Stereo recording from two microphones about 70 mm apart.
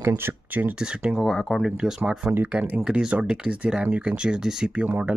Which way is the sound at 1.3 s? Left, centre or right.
Centre.